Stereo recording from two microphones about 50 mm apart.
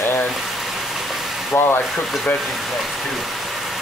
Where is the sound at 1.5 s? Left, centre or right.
Left.